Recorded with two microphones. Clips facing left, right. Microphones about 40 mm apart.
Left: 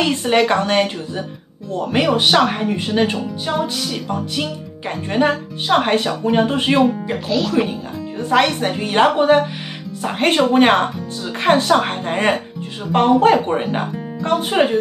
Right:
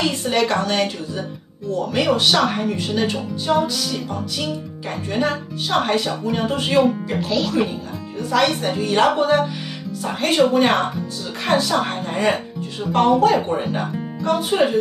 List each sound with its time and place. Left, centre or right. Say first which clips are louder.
0.2 s speech: left 4 dB; left
7.2 s speech: left 4 dB; centre
8.2 s speech: left 3 dB; left
10.0 s speech: left 2 dB; left